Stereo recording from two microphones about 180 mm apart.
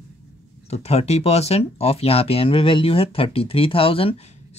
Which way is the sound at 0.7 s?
35° left (ahead or behind).